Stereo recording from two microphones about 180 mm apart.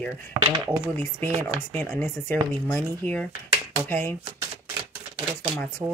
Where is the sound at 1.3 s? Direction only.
40° right (ahead or behind).